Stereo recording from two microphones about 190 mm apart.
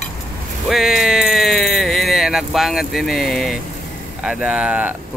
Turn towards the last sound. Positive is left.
turn(degrees=-5)  # may be behind; listen again after turning